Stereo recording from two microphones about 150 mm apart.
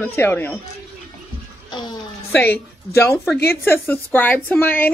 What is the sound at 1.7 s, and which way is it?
Speech, 30° left (ahead or behind).